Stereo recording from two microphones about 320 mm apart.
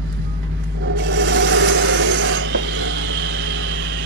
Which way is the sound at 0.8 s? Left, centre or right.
Right.